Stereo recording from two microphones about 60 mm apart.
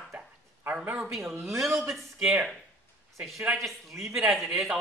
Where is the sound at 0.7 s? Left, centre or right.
Centre.